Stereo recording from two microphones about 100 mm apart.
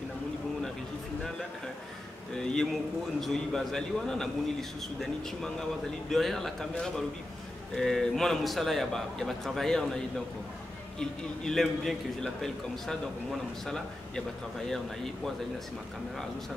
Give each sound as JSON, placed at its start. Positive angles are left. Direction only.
{"t": 2.3, "sound": "a man's voice", "side_deg": 5}